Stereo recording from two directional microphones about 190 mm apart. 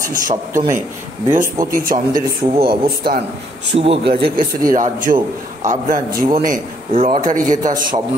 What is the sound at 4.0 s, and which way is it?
Speech, 55° right (ahead or behind).